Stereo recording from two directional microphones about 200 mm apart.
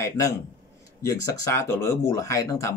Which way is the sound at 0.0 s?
15° left (ahead or behind).